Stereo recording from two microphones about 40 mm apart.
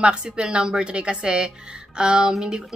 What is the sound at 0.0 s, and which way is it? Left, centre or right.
Speech, right.